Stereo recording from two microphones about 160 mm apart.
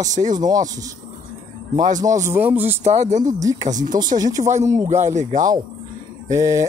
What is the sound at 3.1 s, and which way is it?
Speech, 50° right (ahead or behind).